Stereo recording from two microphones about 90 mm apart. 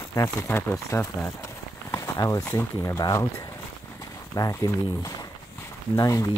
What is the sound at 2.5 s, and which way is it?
Speech, 25° left (ahead or behind).